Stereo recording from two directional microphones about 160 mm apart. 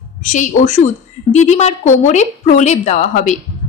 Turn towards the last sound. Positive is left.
turn(degrees=45)  # may be behind; listen again after turning